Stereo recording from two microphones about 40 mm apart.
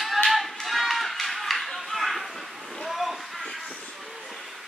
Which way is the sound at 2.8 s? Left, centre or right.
Centre.